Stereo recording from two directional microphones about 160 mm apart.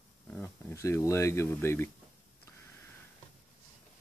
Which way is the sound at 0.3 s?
10° left (ahead or behind).